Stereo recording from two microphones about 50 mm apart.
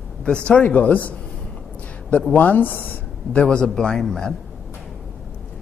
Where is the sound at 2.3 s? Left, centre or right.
Left.